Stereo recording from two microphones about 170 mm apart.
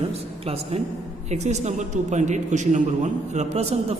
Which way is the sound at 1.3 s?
40° right (ahead or behind).